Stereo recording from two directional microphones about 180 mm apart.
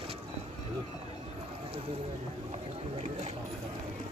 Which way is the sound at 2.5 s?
35° right (ahead or behind).